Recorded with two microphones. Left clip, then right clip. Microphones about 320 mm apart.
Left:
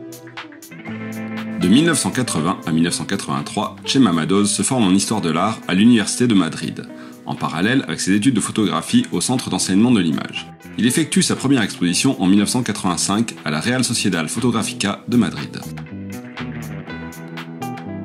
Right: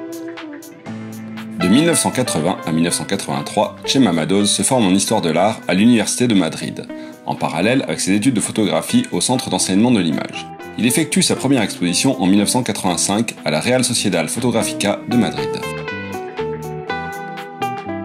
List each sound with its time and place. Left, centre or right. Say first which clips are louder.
1.7 s speech: right 1 dB; centre